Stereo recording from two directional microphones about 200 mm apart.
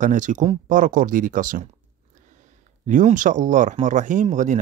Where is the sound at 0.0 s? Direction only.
40° right (ahead or behind).